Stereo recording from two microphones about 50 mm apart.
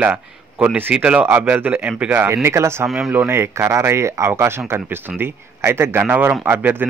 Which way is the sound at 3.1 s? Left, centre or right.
Right.